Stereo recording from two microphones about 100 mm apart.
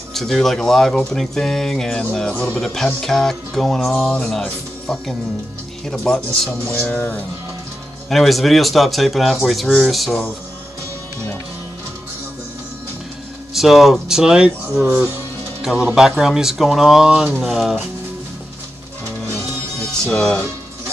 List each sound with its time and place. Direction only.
0.1 s speech: 5° left (ahead or behind)
7.0 s speech: 20° left (ahead or behind)
8.1 s speech: centre (ahead or behind)
13.5 s speech: centre (ahead or behind)
19.4 s music: 5° left (ahead or behind)